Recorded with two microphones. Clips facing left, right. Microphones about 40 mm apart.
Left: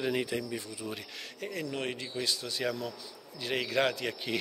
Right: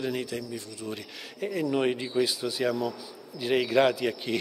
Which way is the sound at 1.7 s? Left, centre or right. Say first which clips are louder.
Right 9 dB; centre.